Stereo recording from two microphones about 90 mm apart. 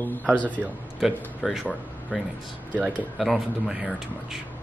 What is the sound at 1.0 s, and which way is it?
Speech, 5° right (ahead or behind).